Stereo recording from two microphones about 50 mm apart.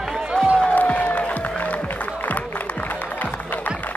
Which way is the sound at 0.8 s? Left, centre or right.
Left.